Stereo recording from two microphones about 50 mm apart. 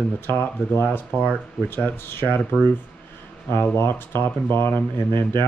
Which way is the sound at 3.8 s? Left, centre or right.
Left.